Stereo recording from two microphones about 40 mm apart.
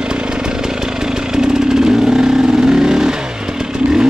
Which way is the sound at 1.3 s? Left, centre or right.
Centre.